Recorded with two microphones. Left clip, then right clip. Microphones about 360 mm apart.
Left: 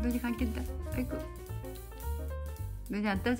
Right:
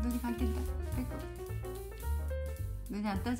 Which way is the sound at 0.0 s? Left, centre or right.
Centre.